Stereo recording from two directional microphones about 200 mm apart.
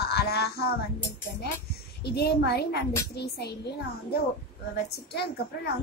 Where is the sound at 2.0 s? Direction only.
55° left (ahead or behind).